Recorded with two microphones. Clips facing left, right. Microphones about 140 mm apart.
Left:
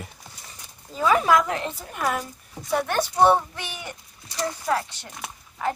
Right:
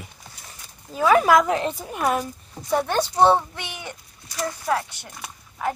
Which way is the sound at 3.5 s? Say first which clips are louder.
Right 1 dB; 20° right (ahead or behind).